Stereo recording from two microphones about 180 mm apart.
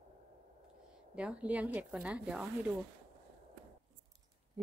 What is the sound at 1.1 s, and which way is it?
A woman's voice, 5° right (ahead or behind).